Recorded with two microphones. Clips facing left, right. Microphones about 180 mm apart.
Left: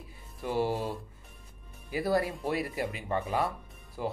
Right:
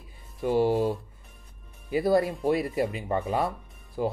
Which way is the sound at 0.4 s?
20° right (ahead or behind).